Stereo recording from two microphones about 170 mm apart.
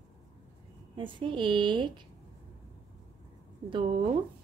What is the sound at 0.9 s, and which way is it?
Speech, 30° right (ahead or behind).